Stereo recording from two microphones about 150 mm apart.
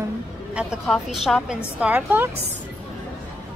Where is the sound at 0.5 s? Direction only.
5° right (ahead or behind).